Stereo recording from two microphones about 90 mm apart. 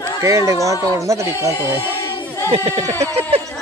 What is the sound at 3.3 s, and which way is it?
Speech, 90° right.